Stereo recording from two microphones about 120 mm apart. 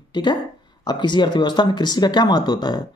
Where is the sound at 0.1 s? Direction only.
40° left (ahead or behind).